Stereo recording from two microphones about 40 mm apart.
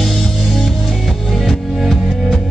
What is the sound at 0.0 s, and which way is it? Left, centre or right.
Music, centre.